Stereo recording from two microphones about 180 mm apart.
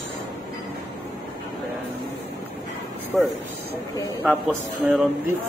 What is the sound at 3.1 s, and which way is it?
Speech, centre (ahead or behind).